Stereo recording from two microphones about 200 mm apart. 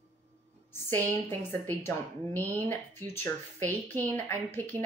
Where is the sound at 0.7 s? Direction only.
10° left (ahead or behind).